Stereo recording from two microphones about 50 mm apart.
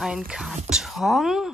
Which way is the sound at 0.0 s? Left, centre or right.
Centre.